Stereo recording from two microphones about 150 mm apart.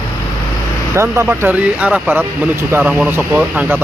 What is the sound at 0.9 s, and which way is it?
Speech, 15° right (ahead or behind).